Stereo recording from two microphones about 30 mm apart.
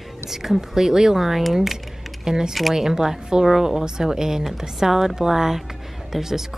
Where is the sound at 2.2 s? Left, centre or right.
Right.